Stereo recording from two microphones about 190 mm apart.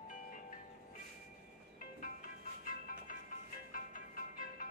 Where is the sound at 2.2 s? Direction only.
45° left (ahead or behind).